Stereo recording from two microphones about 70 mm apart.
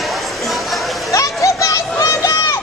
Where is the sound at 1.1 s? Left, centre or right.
Left.